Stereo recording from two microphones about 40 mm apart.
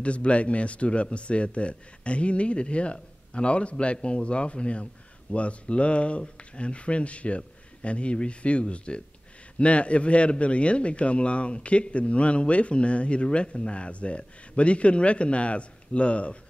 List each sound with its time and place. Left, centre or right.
0.0 s speech: left